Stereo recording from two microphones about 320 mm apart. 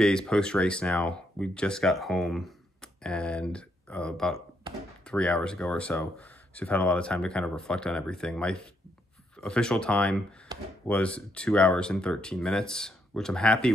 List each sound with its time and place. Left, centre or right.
0.0 s speech: centre
10.5 s a sound: centre
10.9 s speech: centre